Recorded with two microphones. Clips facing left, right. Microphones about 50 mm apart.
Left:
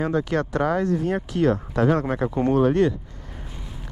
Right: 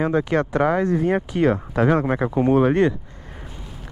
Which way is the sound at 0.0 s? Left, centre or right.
Centre.